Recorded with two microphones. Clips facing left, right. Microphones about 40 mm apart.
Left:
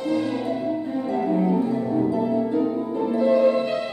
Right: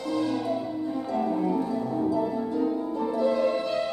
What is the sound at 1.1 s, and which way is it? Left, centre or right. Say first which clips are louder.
Music: left 5 dB; left.